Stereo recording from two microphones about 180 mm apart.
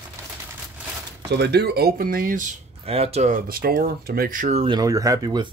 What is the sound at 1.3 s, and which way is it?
Speech, 65° right (ahead or behind).